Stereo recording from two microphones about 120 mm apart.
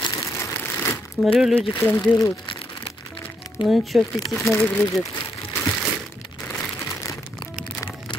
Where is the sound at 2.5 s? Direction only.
45° left (ahead or behind).